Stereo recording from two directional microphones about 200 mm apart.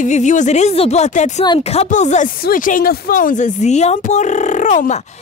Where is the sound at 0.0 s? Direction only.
35° left (ahead or behind).